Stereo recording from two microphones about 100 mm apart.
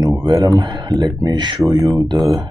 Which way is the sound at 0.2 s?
40° right (ahead or behind).